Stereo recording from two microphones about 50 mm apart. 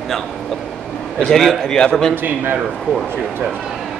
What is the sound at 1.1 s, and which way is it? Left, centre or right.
Speech, centre.